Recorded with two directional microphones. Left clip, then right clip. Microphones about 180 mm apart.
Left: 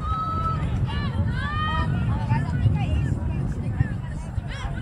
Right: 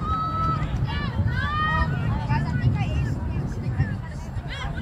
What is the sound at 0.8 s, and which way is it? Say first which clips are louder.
Vehicle: right 1 dB; 15° right (ahead or behind).